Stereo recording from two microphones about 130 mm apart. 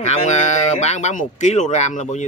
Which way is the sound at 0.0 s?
60° left (ahead or behind).